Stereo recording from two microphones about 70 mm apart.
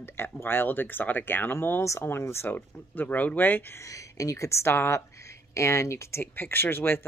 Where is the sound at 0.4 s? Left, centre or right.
Left.